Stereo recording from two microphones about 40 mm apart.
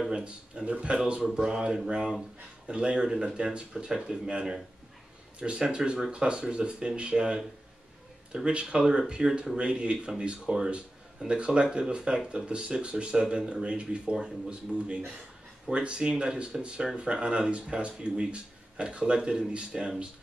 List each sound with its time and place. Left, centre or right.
0.1 s speech: right
5.9 s speech: centre
6.2 s speech: right
8.5 s speech: right
8.8 s speech: centre
9.1 s speech: right